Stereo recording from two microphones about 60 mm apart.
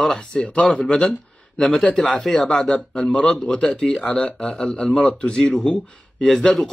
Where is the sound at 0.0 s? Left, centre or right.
Centre.